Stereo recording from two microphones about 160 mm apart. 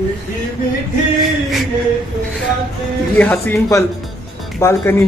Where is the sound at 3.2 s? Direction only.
10° left (ahead or behind).